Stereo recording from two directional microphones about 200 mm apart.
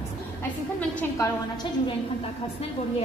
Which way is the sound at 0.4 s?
10° left (ahead or behind).